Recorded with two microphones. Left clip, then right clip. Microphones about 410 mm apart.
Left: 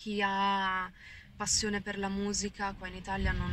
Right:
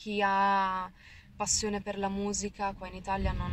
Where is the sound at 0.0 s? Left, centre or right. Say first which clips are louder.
Right 3 dB; centre.